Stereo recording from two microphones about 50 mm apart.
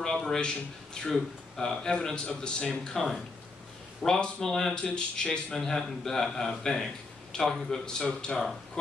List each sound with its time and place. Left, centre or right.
0.0 s a sound: centre
1.0 s a man's voice: centre
2.9 s a man's voice: centre